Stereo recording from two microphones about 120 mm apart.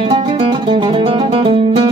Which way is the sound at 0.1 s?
45° right (ahead or behind).